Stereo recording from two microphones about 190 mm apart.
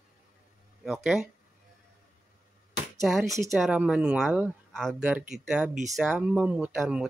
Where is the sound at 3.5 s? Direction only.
5° right (ahead or behind).